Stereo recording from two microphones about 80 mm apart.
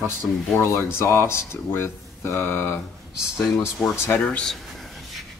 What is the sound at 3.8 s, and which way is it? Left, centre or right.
Speech, centre.